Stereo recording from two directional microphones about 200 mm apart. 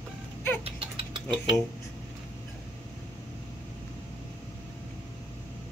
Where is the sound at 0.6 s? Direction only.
25° right (ahead or behind).